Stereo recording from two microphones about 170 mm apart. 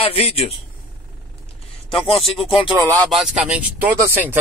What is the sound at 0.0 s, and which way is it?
Speech, 35° left (ahead or behind).